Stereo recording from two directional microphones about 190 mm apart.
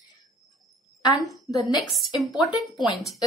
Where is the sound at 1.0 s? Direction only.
20° left (ahead or behind).